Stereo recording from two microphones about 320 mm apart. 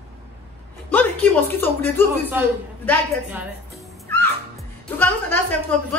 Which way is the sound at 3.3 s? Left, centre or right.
Centre.